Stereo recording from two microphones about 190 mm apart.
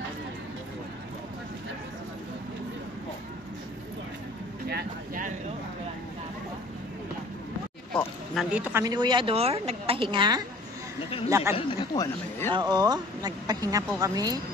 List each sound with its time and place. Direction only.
4.6 s a sound: 50° right (ahead or behind)
8.4 s a woman's voice: 5° right (ahead or behind)
8.8 s a woman's voice: 20° right (ahead or behind)
11.5 s speech: 25° left (ahead or behind)
12.5 s speech: 20° right (ahead or behind)